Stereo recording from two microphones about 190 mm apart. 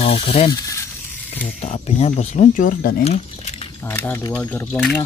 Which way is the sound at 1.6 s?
35° left (ahead or behind).